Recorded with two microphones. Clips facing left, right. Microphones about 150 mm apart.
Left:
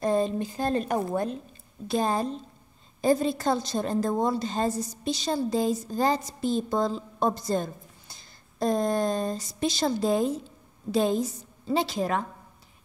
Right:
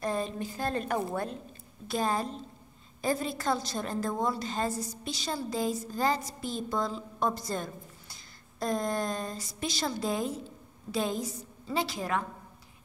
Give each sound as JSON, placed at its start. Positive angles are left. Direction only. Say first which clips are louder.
{"t": 0.0, "sound": "a woman's voice", "louder": "left 7 dB", "side_deg": 25}